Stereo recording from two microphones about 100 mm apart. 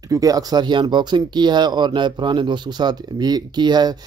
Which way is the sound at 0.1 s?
35° right (ahead or behind).